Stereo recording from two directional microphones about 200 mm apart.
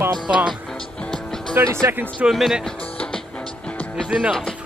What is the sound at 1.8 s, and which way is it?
Speech, 10° right (ahead or behind).